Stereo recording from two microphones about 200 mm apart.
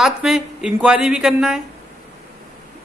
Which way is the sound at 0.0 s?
5° right (ahead or behind).